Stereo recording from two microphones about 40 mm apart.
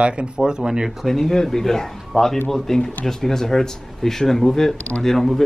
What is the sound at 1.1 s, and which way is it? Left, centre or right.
Speech, centre.